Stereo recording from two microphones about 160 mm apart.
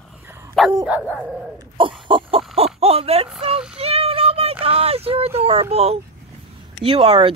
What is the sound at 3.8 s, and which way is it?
Child singing, 40° right (ahead or behind).